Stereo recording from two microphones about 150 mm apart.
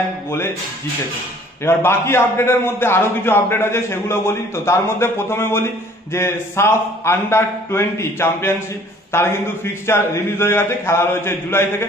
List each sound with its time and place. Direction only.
1.6 s a man's voice: 15° left (ahead or behind)